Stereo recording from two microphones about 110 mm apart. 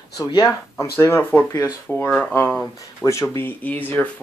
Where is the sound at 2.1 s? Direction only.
5° right (ahead or behind).